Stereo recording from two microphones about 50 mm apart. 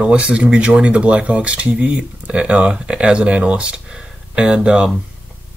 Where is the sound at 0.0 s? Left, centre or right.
Right.